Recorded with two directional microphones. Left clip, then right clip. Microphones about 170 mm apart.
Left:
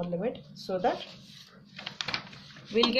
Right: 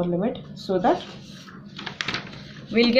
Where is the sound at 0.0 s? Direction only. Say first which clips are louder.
Right 7 dB; 35° left (ahead or behind).